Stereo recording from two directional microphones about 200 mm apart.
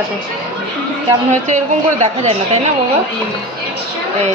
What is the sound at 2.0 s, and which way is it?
Speech, 35° right (ahead or behind).